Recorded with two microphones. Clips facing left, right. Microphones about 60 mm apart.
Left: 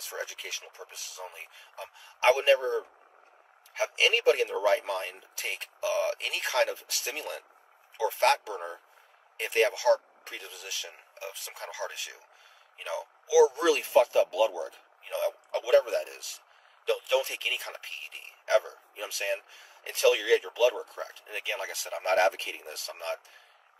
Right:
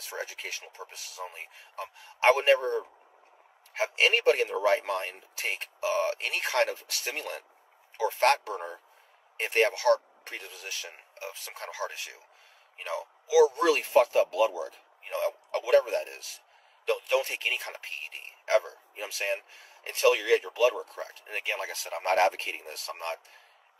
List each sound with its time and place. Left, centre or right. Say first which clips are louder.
0.0 s a man's voice: right 1 dB; right